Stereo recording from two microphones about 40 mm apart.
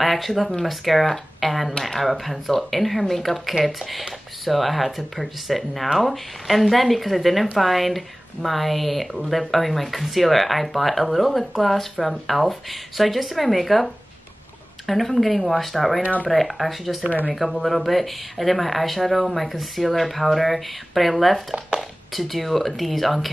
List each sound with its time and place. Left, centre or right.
0.0 s speech: centre
1.7 s speech: centre
2.0 s speech: centre